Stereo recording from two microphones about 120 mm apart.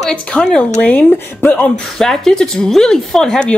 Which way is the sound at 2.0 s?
5° left (ahead or behind).